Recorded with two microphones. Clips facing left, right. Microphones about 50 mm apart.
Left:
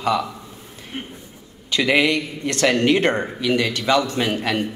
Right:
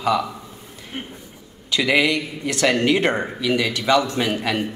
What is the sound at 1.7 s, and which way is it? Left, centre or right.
Speech, centre.